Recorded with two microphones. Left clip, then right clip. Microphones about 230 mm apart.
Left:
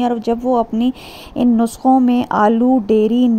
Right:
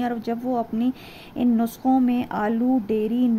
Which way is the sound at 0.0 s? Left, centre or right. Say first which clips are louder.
Left 9 dB; centre.